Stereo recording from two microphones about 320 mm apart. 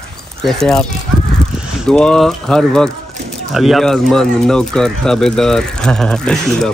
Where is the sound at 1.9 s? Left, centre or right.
Centre.